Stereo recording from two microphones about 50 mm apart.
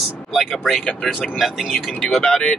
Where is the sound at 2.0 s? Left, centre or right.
Centre.